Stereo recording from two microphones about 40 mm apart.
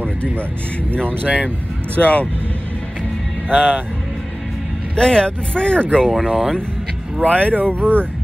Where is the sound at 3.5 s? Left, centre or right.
Right.